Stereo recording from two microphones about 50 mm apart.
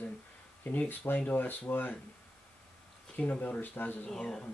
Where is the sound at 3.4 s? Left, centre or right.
Left.